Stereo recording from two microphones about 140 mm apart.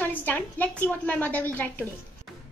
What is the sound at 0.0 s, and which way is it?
A woman's voice, 10° left (ahead or behind).